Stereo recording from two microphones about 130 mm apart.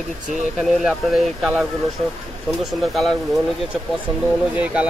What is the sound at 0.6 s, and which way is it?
Speech, 5° right (ahead or behind).